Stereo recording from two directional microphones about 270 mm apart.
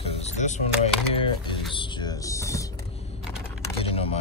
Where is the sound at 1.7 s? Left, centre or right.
Centre.